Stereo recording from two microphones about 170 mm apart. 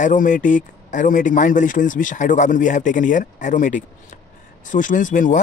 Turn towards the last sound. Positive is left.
turn(degrees=50)  # may be behind; listen again after turning